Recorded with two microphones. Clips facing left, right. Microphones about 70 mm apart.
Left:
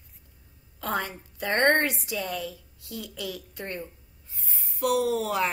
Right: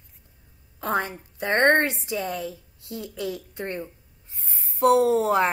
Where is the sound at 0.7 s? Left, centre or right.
Right.